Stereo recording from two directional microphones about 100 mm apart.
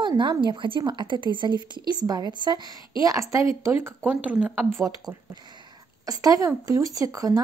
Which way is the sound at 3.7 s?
20° right (ahead or behind).